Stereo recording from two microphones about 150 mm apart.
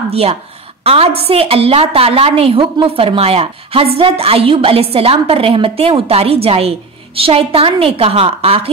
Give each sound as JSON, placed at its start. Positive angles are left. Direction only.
{"t": 0.1, "sound": "a woman's voice", "side_deg": -40}